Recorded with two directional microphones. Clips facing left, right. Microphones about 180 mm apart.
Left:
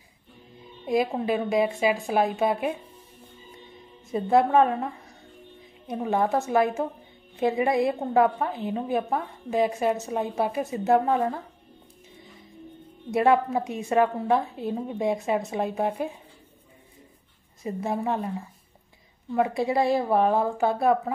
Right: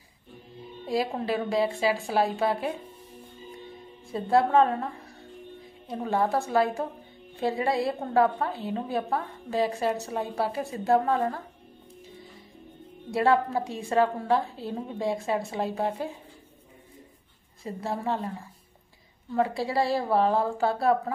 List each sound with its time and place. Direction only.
0.8 s a woman's voice: 20° left (ahead or behind)
4.1 s a woman's voice: 15° left (ahead or behind)
13.1 s a woman's voice: 20° left (ahead or behind)
17.6 s a woman's voice: 20° left (ahead or behind)
19.3 s a woman's voice: 20° left (ahead or behind)